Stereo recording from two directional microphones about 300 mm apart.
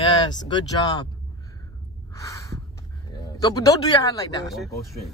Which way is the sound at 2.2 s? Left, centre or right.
Centre.